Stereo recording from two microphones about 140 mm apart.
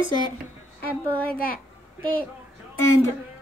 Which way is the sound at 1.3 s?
90° left.